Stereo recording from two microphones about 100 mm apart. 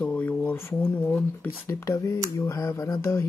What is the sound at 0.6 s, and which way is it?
Speech, 25° left (ahead or behind).